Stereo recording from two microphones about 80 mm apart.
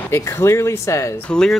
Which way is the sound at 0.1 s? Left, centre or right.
Left.